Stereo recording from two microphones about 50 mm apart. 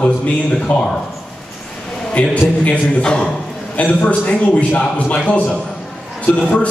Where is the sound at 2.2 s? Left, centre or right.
Left.